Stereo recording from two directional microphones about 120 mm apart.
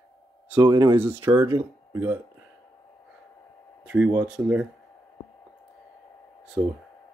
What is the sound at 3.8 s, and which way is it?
Speech, 15° right (ahead or behind).